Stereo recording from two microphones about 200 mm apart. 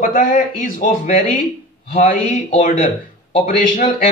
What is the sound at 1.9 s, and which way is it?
Speech, 30° left (ahead or behind).